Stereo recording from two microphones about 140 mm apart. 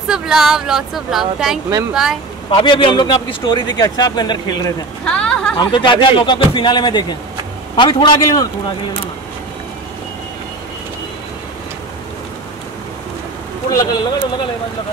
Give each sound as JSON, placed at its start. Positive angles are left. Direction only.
{"t": 0.1, "sound": "speech", "side_deg": -5}
{"t": 2.5, "sound": "a man's voice", "side_deg": 35}
{"t": 5.0, "sound": "a woman's voice", "side_deg": 5}
{"t": 5.7, "sound": "a man's voice", "side_deg": 35}
{"t": 13.7, "sound": "a man's voice", "side_deg": 25}